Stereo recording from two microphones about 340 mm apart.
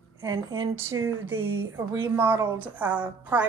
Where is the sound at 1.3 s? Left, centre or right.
Right.